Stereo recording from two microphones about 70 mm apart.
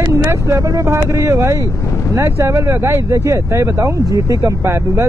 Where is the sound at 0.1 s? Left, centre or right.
Right.